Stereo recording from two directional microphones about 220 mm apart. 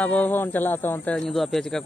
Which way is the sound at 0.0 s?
5° left (ahead or behind).